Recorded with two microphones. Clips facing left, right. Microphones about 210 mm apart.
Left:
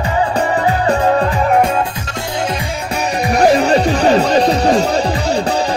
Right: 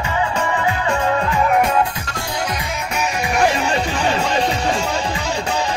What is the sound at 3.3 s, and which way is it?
Music, 35° left (ahead or behind).